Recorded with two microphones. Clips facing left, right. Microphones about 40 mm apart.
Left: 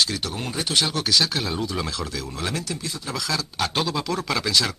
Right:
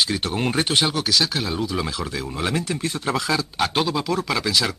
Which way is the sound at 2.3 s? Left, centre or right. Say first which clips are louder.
Right 4 dB; right.